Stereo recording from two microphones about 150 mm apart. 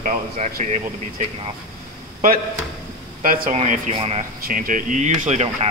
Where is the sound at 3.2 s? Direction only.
70° right (ahead or behind).